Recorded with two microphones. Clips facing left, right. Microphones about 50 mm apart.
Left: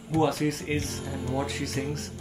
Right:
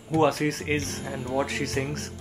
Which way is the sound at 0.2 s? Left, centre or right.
Right.